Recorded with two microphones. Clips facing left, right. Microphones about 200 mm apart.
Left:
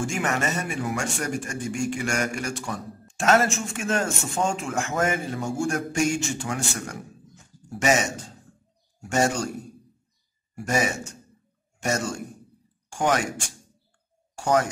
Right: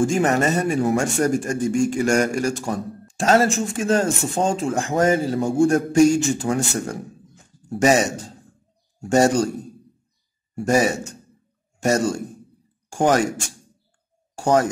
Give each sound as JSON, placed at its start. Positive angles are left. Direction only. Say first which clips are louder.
{"t": 0.0, "sound": "speech", "louder": "right 8 dB", "side_deg": -40}
{"t": 10.5, "sound": "speech", "louder": "right 7 dB", "side_deg": -35}
{"t": 14.3, "sound": "speech", "louder": "right 4 dB", "side_deg": -40}